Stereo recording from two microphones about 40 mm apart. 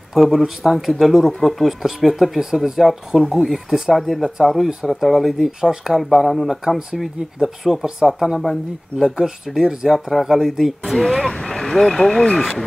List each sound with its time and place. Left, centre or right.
0.1 s speech: centre
5.6 s speech: centre
5.9 s speech: centre
8.9 s speech: centre
9.8 s speech: centre
11.2 s speech: centre